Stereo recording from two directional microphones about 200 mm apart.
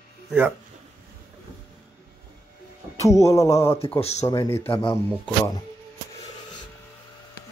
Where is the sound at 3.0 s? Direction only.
15° left (ahead or behind).